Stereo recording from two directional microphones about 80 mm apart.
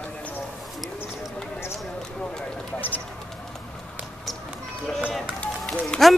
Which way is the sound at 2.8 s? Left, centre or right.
Left.